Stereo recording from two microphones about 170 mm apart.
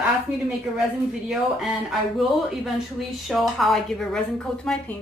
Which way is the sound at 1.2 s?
Centre (ahead or behind).